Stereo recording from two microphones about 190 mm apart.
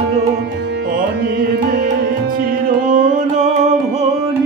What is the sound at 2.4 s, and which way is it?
Music, 45° right (ahead or behind).